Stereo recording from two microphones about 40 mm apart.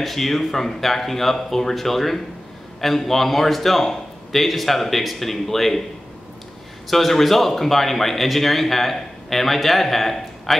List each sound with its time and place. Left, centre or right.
0.0 s speech: centre
6.9 s speech: centre